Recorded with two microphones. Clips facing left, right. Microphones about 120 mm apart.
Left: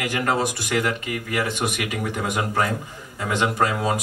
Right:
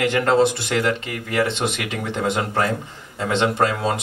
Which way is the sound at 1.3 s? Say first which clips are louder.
Right 4 dB; 25° right (ahead or behind).